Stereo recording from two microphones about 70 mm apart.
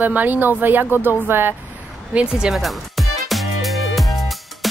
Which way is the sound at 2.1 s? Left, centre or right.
Centre.